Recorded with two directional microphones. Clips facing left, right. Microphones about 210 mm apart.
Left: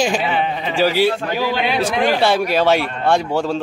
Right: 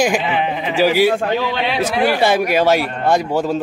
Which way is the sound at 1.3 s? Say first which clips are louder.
Even; 10° left (ahead or behind).